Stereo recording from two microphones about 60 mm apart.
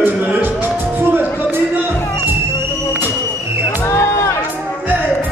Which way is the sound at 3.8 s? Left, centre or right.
Left.